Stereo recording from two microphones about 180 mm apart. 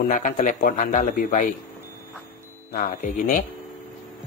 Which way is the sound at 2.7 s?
50° left (ahead or behind).